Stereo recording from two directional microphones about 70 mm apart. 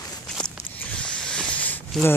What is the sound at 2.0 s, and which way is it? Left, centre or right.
Speech, centre.